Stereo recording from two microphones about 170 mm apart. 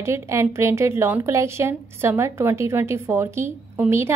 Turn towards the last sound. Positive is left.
turn(degrees=-15)  # may be behind; listen again after turning